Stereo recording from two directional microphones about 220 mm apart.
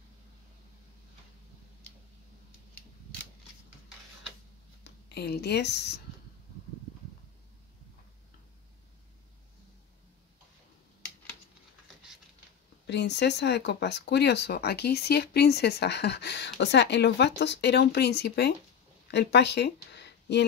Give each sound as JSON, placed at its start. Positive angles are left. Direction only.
{"t": 4.8, "sound": "speech", "side_deg": 45}
{"t": 12.8, "sound": "speech", "side_deg": 50}